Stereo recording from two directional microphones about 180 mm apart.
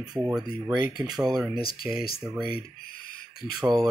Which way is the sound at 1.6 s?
55° left (ahead or behind).